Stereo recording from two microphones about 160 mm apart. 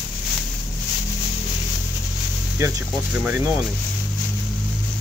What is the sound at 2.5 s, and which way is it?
Speech, 15° right (ahead or behind).